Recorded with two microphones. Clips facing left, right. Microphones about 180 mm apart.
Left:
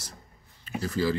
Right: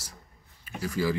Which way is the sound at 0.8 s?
10° right (ahead or behind).